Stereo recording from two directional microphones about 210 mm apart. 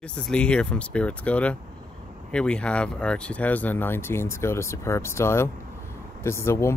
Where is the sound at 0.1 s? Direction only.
5° left (ahead or behind).